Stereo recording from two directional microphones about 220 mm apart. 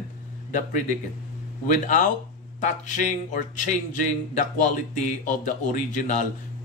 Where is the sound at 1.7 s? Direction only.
35° left (ahead or behind).